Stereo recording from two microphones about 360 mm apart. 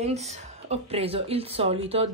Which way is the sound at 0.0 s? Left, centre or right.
Centre.